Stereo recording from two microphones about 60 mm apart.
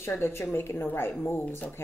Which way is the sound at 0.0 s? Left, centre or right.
Left.